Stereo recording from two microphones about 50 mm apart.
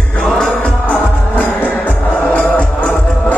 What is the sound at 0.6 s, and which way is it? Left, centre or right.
Music, left.